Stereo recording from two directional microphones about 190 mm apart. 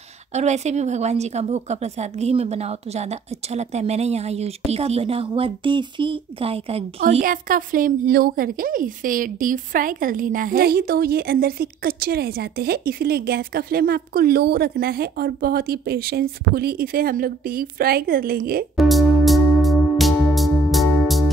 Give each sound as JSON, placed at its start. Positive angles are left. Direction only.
{"t": 0.3, "sound": "a woman's voice", "side_deg": -35}
{"t": 7.2, "sound": "a woman's voice", "side_deg": -45}
{"t": 18.8, "sound": "music", "side_deg": 0}